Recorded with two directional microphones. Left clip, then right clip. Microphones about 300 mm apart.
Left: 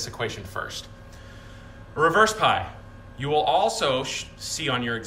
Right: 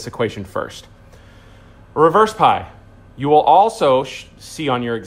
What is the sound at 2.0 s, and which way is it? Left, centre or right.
Speech, centre.